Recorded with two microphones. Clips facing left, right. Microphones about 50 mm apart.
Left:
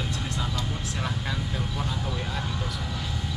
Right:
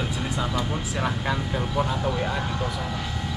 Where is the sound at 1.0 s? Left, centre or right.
Centre.